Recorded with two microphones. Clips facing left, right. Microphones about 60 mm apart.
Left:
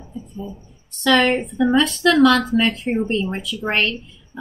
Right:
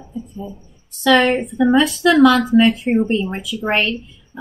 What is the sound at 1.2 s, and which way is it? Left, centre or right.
A woman's voice, centre.